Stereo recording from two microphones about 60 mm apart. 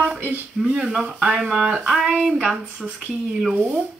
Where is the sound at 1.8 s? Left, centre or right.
Centre.